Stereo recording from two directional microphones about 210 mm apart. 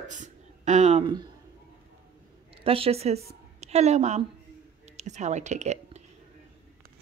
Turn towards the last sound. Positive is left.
turn(degrees=-35)  # may be behind; listen again after turning